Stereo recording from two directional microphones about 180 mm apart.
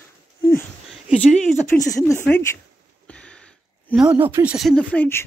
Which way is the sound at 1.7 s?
20° left (ahead or behind).